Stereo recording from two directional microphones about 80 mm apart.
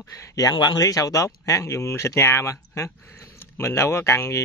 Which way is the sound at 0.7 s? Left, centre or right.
Left.